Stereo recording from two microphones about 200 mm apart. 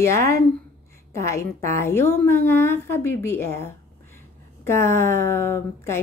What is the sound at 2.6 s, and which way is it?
Speech, 10° left (ahead or behind).